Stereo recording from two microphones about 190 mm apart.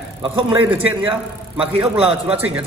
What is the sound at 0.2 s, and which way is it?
Speech, 25° right (ahead or behind).